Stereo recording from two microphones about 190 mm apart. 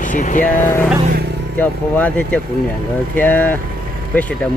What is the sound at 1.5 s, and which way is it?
Speech, 10° left (ahead or behind).